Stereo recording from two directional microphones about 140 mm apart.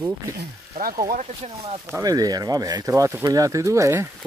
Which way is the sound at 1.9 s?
25° right (ahead or behind).